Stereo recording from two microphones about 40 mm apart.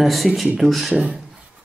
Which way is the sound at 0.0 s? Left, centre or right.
Centre.